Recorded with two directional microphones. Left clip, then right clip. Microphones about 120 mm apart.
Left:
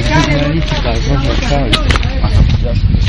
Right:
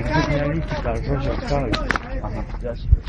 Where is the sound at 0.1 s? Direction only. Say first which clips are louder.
Left 7 dB; 35° right (ahead or behind).